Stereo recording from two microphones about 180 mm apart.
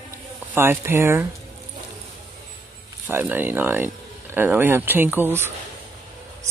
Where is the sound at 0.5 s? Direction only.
15° right (ahead or behind).